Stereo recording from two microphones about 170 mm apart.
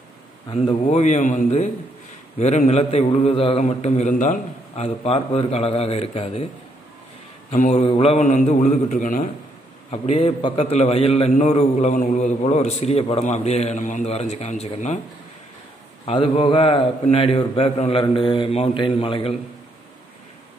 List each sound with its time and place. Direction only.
0.5 s a man's voice: 30° left (ahead or behind)
0.8 s a man's voice: 45° left (ahead or behind)
7.7 s a man's voice: 35° left (ahead or behind)
9.8 s a man's voice: 35° left (ahead or behind)
16.1 s a man's voice: 30° left (ahead or behind)